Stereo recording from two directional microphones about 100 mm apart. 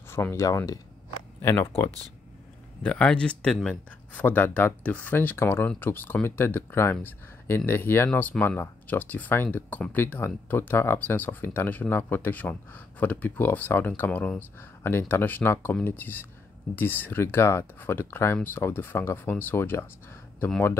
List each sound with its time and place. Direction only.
0.1 s speech: 25° left (ahead or behind)
2.8 s speech: 10° left (ahead or behind)